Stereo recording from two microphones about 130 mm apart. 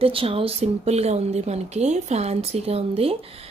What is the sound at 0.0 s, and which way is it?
Speech, 45° right (ahead or behind).